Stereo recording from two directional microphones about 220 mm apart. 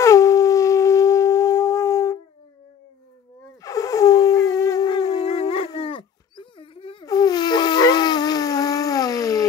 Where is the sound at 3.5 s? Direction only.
15° left (ahead or behind).